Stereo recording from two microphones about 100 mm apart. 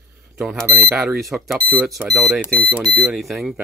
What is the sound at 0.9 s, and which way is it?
Speech, 5° right (ahead or behind).